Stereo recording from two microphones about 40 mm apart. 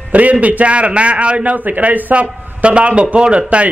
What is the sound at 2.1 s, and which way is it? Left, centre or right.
A man's voice, right.